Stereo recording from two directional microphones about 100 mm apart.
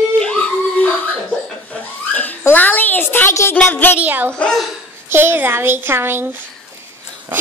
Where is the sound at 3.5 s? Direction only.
20° left (ahead or behind).